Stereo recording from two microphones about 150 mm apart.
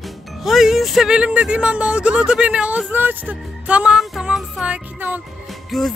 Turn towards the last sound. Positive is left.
turn(degrees=0)  # may be behind; listen again after turning